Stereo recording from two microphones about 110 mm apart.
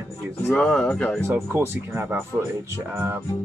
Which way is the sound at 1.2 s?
25° right (ahead or behind).